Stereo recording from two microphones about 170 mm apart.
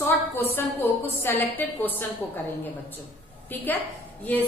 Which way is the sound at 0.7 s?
10° left (ahead or behind).